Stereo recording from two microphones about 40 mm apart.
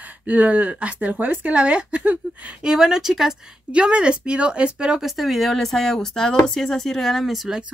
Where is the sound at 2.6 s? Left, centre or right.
Centre.